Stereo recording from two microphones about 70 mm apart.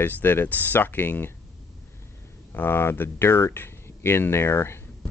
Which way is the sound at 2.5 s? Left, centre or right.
Left.